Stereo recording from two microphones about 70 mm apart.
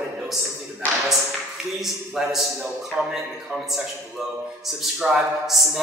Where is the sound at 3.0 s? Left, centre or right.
Centre.